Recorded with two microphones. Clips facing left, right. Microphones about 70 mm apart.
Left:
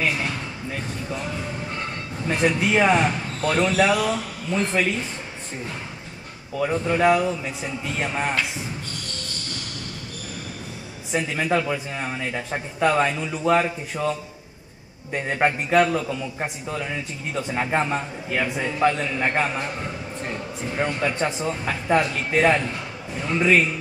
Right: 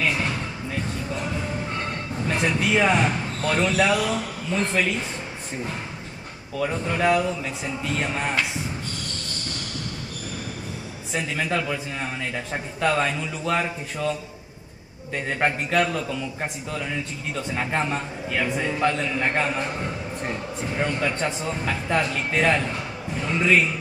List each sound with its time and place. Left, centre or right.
2.4 s a man's voice: centre
6.6 s speech: centre
11.1 s a man's voice: centre
15.1 s a man's voice: centre
20.7 s a man's voice: centre